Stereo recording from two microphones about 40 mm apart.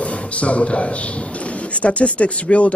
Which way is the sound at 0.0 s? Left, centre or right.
Left.